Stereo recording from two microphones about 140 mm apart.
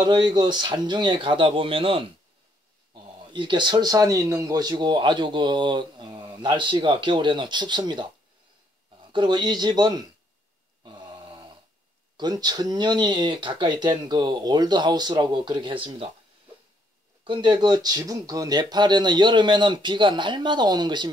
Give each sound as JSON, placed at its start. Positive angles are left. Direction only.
{"t": 0.0, "sound": "speech", "side_deg": -30}
{"t": 9.1, "sound": "speech", "side_deg": -35}
{"t": 10.8, "sound": "grunt", "side_deg": -30}
{"t": 12.2, "sound": "speech", "side_deg": -30}
{"t": 17.3, "sound": "speech", "side_deg": -35}